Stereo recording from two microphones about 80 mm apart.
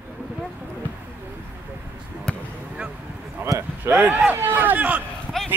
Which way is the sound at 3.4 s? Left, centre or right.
Right.